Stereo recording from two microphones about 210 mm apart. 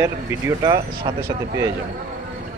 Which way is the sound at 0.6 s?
20° right (ahead or behind).